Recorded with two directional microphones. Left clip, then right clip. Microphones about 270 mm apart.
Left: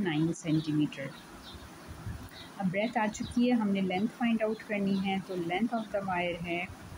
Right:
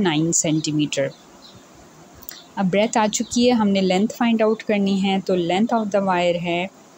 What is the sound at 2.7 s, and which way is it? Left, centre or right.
Speech, right.